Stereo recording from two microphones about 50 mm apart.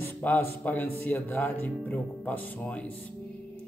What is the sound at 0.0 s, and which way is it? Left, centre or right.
Speech, left.